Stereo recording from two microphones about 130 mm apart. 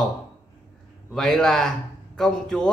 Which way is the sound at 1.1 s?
5° left (ahead or behind).